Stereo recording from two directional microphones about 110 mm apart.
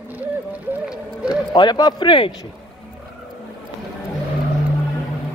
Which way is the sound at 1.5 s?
40° left (ahead or behind).